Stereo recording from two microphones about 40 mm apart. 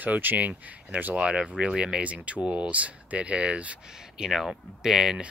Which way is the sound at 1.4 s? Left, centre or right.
Right.